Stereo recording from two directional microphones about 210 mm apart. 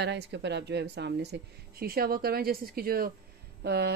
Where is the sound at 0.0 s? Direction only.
55° right (ahead or behind).